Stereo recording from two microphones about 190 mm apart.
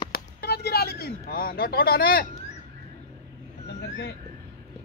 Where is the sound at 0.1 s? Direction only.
55° left (ahead or behind).